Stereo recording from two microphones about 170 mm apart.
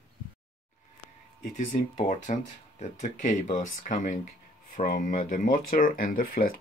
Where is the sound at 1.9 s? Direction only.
50° left (ahead or behind).